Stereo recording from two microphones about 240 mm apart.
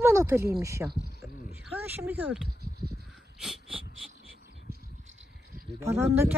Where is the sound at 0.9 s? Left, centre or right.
Right.